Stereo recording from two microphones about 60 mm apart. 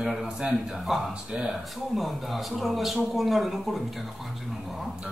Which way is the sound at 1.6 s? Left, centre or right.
Centre.